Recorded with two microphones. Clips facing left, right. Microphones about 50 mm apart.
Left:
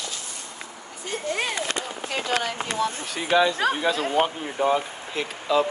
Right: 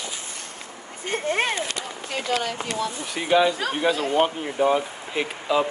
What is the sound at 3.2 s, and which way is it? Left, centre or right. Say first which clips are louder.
Speech: right 2 dB; centre.